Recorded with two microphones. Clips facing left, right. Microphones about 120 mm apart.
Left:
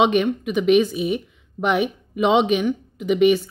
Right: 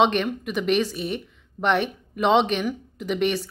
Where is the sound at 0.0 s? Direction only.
5° left (ahead or behind).